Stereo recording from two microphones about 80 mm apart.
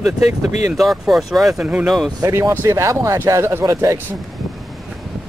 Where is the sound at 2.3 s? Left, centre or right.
Right.